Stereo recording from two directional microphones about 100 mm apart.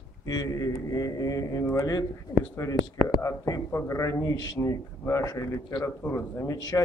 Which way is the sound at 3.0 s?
30° left (ahead or behind).